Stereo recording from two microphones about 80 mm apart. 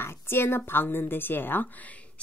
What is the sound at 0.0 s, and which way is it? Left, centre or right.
A woman's voice, left.